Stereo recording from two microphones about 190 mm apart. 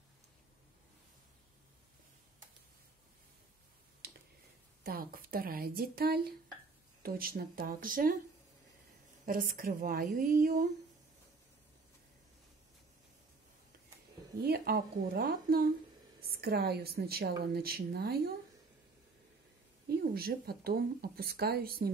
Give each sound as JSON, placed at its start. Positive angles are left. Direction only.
{"t": 4.8, "sound": "speech", "side_deg": -50}
{"t": 9.2, "sound": "speech", "side_deg": -50}
{"t": 14.4, "sound": "speech", "side_deg": -55}
{"t": 19.9, "sound": "speech", "side_deg": -55}